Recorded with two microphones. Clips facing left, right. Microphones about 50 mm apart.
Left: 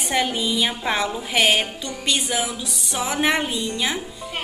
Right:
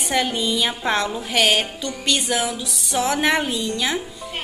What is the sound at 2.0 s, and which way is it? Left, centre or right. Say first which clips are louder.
Music: right 2 dB; centre.